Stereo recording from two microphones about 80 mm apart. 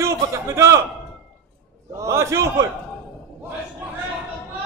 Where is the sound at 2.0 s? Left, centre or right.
Right.